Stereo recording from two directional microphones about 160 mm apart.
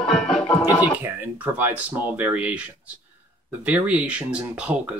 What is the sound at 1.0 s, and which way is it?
Speech, 10° right (ahead or behind).